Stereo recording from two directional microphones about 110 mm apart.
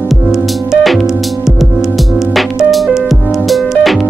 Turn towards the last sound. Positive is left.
turn(degrees=0)  # may be behind; listen again after turning